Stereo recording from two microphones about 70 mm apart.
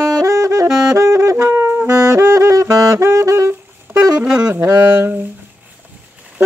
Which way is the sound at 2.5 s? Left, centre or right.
Right.